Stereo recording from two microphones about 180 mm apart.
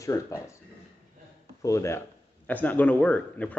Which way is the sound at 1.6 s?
15° left (ahead or behind).